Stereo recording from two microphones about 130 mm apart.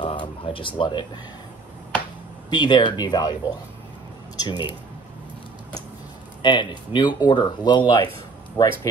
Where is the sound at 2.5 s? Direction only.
35° left (ahead or behind).